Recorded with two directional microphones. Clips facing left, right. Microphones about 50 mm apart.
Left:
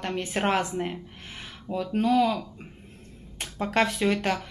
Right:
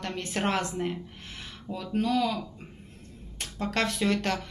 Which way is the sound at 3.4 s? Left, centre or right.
Centre.